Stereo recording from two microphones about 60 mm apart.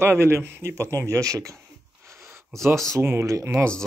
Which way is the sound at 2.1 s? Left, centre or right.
Right.